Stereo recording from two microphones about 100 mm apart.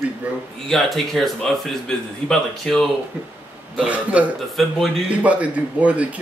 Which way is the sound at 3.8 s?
15° right (ahead or behind).